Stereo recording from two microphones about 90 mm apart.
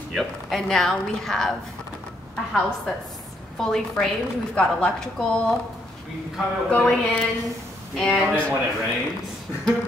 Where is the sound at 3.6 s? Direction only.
5° left (ahead or behind).